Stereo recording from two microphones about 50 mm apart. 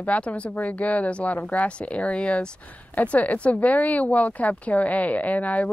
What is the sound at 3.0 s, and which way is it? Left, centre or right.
Speech, left.